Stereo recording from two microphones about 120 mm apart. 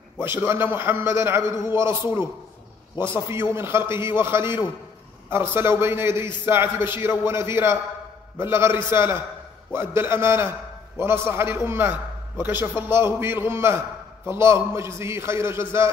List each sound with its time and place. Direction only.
0.2 s a man's voice: 20° right (ahead or behind)
3.0 s a man's voice: 20° right (ahead or behind)